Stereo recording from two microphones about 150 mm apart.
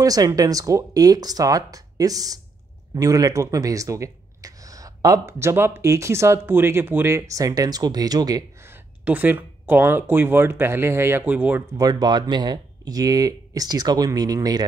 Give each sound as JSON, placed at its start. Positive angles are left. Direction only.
{"t": 0.0, "sound": "speech", "side_deg": -25}
{"t": 9.0, "sound": "speech", "side_deg": -10}
{"t": 11.7, "sound": "speech", "side_deg": -25}